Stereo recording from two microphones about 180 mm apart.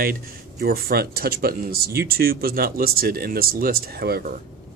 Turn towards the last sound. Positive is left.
turn(degrees=-60)  # may be behind; listen again after turning